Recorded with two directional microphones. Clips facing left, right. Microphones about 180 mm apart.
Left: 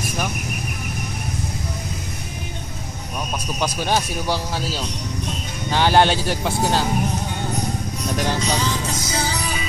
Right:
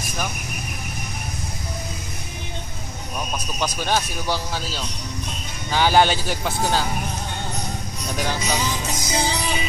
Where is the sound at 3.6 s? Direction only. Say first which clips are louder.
Left 2 dB; 5° left (ahead or behind).